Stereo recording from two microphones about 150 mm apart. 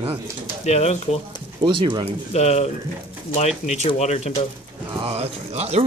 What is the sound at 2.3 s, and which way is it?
Speech, 45° left (ahead or behind).